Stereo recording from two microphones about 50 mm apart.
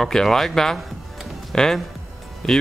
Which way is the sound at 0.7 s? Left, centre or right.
Centre.